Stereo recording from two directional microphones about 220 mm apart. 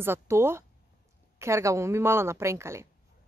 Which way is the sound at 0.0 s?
10° right (ahead or behind).